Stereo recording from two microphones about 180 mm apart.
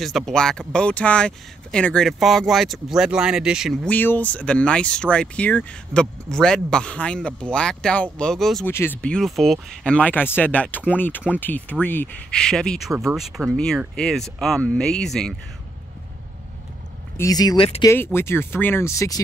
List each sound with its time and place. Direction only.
0.0 s speech: centre (ahead or behind)
3.9 s speech: 10° left (ahead or behind)
17.2 s speech: 20° left (ahead or behind)